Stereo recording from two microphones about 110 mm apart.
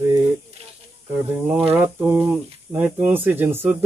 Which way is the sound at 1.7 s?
15° right (ahead or behind).